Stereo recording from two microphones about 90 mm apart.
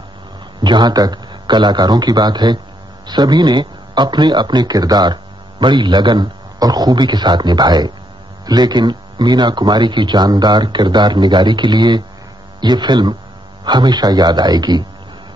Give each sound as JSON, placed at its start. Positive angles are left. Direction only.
{"t": 0.6, "sound": "a man's voice", "side_deg": -55}